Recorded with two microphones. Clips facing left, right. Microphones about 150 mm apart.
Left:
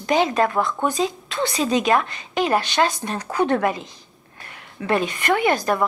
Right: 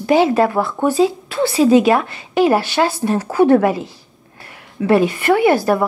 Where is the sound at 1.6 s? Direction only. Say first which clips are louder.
Right 8 dB; 15° right (ahead or behind).